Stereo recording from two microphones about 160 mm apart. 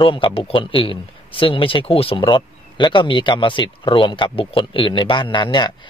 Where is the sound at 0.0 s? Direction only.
30° left (ahead or behind).